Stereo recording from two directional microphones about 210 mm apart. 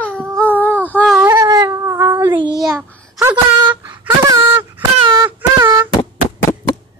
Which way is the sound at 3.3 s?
20° right (ahead or behind).